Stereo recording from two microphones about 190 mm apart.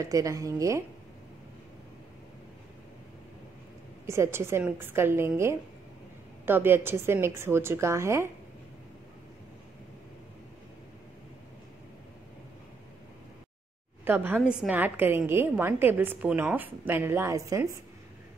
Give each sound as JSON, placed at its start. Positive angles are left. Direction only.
{"t": 0.0, "sound": "a woman's voice", "side_deg": -15}
{"t": 4.0, "sound": "a woman's voice", "side_deg": -15}
{"t": 14.0, "sound": "a woman's voice", "side_deg": -10}